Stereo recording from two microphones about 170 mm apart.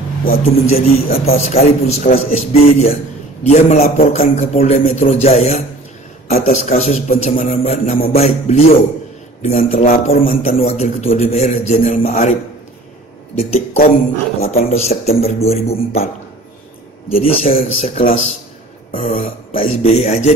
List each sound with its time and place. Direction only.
0.2 s a man's voice: 60° left (ahead or behind)
1.6 s a man's voice: 40° left (ahead or behind)
13.4 s a man's voice: 40° left (ahead or behind)
17.1 s a man's voice: 35° left (ahead or behind)